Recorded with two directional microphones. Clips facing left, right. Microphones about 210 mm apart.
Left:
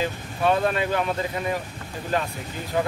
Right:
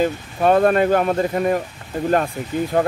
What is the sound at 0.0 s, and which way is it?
Speech, 50° right (ahead or behind).